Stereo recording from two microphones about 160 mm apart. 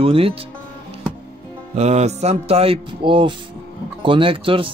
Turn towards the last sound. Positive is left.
turn(degrees=-35)  # may be behind; listen again after turning